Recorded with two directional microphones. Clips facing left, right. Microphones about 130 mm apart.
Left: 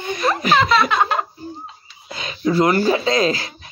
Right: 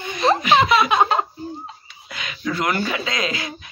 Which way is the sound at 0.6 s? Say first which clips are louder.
Even; 15° right (ahead or behind).